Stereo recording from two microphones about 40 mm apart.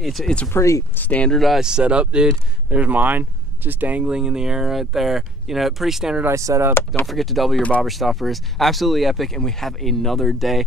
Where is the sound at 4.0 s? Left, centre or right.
Centre.